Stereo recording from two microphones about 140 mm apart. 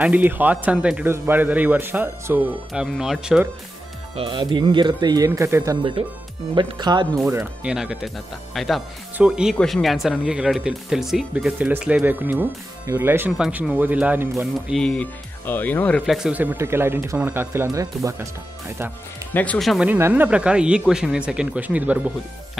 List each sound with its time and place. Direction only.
0.0 s speech: 10° right (ahead or behind)
4.2 s speech: 35° right (ahead or behind)
6.0 s speech: 45° right (ahead or behind)
6.5 s speech: 30° right (ahead or behind)
7.6 s speech: 5° right (ahead or behind)
14.7 s speech: 5° left (ahead or behind)
16.1 s speech: 5° right (ahead or behind); by 18.3 s 25° right (ahead or behind)
19.3 s speech: 10° left (ahead or behind)
19.9 s speech: 15° right (ahead or behind)